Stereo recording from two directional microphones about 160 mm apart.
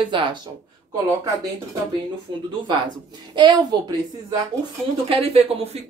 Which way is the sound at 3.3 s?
30° right (ahead or behind).